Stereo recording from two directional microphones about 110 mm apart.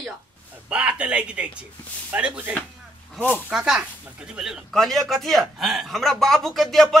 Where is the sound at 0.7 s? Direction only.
10° right (ahead or behind).